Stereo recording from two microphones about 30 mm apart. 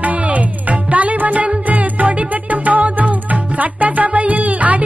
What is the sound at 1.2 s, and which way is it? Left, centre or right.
Music, right.